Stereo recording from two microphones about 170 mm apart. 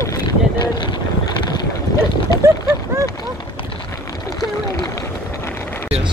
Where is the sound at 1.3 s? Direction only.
25° left (ahead or behind).